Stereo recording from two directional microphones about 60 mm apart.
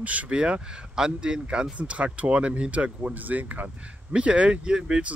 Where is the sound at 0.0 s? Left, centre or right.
Right.